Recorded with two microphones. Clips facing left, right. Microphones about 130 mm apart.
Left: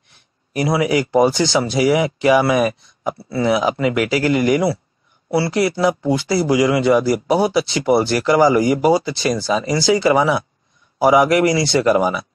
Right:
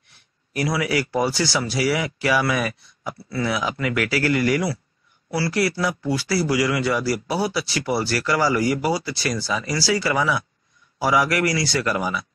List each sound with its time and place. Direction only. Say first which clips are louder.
0.5 s speech: left 6 dB; 25° left (ahead or behind)